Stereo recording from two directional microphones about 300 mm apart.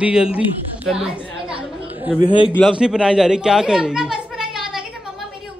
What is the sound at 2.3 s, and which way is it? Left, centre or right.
Speech, centre.